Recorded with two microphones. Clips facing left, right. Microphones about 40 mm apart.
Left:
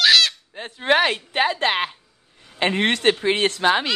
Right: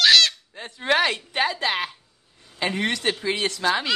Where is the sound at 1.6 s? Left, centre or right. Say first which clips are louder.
Left 4 dB; left.